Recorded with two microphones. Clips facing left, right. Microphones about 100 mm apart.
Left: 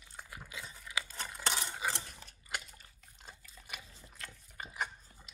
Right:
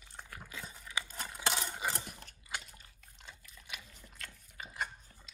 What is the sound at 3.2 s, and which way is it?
Liquid, 40° left (ahead or behind).